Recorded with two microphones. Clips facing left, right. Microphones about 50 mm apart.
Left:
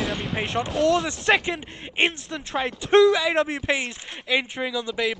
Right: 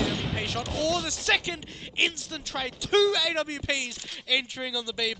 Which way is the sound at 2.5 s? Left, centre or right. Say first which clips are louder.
Left 6 dB; centre.